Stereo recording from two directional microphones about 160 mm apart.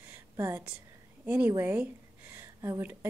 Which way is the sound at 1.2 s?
10° right (ahead or behind).